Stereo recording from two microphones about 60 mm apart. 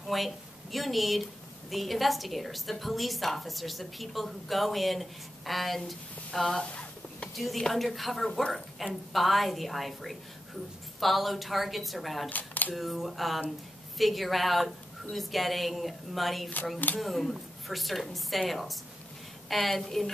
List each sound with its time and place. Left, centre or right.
0.1 s a woman's voice: centre
6.6 s a sound: left
7.3 s a woman's voice: centre
12.3 s speech: left
12.7 s a woman's voice: centre